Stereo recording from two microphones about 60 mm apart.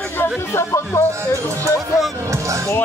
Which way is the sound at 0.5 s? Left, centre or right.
Left.